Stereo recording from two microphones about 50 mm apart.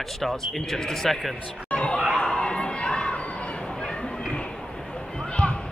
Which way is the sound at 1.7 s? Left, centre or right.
Left.